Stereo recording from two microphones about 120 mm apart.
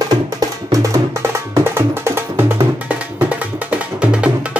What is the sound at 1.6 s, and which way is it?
Music, 20° right (ahead or behind).